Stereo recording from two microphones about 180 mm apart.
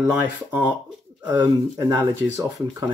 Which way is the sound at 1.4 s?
20° right (ahead or behind).